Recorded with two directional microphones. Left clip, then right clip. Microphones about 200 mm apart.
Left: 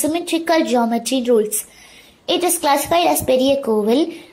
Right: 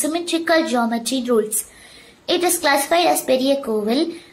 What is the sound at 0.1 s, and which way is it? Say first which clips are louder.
A woman's voice: right 2 dB; 25° left (ahead or behind).